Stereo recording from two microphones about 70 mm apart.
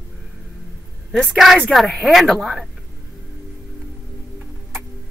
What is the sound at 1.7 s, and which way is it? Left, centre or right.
A woman's voice, centre.